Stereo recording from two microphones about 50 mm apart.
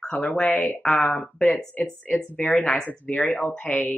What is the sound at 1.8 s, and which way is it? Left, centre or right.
Speech, left.